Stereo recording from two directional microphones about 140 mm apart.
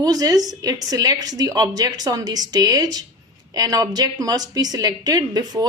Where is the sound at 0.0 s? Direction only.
25° right (ahead or behind).